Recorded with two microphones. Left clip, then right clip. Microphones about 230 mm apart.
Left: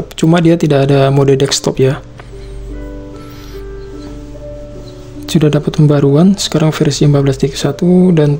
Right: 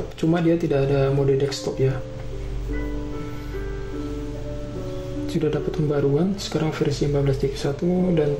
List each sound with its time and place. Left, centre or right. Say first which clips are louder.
0.2 s speech: left 10 dB; left
5.3 s speech: left 11 dB; left